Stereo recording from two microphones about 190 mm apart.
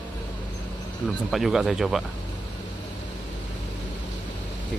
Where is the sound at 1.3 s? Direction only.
Centre (ahead or behind).